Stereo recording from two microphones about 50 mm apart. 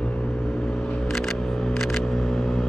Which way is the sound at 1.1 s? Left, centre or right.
Centre.